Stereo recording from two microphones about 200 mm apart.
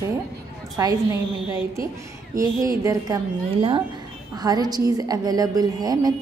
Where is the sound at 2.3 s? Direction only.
15° right (ahead or behind).